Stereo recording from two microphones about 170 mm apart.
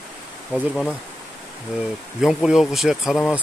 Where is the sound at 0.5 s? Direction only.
5° left (ahead or behind).